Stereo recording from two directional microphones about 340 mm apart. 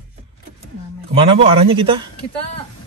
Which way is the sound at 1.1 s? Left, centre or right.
Centre.